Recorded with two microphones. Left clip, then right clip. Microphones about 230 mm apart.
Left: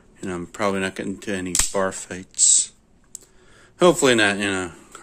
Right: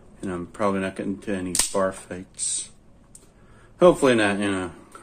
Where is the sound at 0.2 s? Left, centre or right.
Left.